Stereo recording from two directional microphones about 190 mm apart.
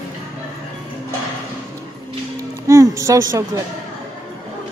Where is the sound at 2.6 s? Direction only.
15° right (ahead or behind).